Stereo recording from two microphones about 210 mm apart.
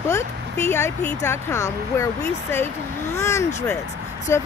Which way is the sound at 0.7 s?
10° left (ahead or behind).